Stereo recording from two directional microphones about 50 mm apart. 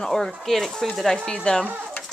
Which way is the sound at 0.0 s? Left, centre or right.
Centre.